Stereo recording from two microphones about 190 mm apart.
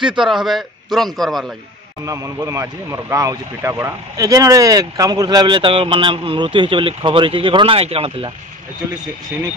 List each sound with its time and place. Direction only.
0.2 s a man's voice: centre (ahead or behind)
2.0 s speech: 15° right (ahead or behind)